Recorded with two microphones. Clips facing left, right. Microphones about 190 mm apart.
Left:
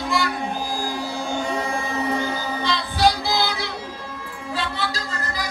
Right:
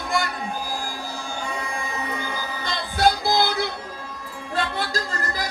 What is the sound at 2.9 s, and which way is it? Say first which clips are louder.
Music: right 1 dB; 55° right (ahead or behind).